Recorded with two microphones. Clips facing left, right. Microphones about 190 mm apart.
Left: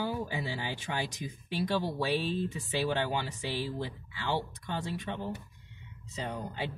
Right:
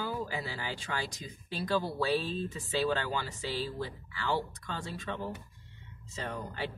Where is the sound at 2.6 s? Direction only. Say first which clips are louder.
Right 1 dB; 20° left (ahead or behind).